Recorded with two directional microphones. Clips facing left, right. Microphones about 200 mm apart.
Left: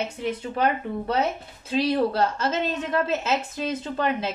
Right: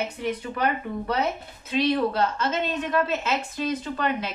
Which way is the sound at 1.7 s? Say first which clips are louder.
Left 1 dB; 30° left (ahead or behind).